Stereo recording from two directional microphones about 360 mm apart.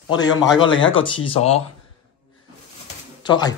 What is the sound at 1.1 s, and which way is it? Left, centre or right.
Speech, centre.